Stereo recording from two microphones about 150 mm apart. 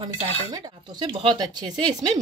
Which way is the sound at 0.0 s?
30° right (ahead or behind).